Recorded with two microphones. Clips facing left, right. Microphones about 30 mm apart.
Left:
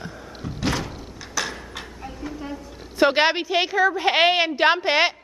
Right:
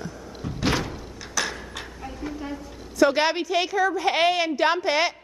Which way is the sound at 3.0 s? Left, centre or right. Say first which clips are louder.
Left 2 dB; left.